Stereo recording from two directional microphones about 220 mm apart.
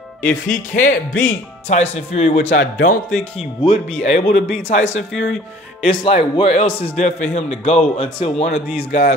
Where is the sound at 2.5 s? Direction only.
55° left (ahead or behind).